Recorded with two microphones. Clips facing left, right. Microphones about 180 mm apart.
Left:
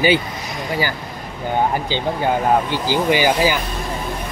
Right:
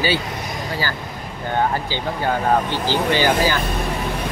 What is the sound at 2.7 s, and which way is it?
Speech, 10° left (ahead or behind).